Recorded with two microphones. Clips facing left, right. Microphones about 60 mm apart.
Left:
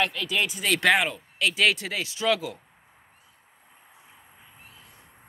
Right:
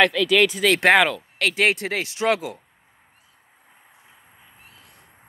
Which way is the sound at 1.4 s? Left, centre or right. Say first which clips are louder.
Right 3 dB; right.